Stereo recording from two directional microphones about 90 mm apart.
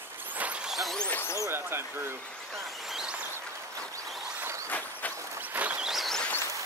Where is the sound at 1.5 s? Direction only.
25° right (ahead or behind).